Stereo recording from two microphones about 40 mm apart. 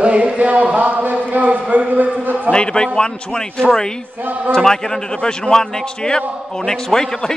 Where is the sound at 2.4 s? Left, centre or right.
Left.